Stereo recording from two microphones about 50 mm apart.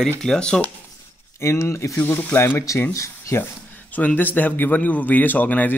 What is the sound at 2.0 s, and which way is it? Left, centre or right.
Speech, left.